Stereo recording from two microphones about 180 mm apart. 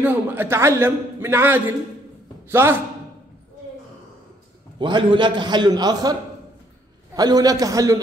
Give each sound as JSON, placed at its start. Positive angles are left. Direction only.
{"t": 0.0, "sound": "a man's voice", "side_deg": -10}
{"t": 4.7, "sound": "a man's voice", "side_deg": -25}
{"t": 7.2, "sound": "a man's voice", "side_deg": -20}